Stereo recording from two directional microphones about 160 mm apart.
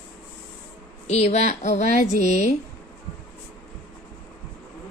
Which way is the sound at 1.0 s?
45° left (ahead or behind).